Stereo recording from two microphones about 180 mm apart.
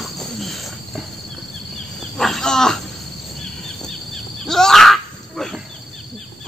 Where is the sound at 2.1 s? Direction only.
Centre (ahead or behind).